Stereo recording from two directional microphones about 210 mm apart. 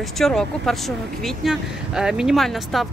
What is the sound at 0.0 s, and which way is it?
Speech, centre (ahead or behind).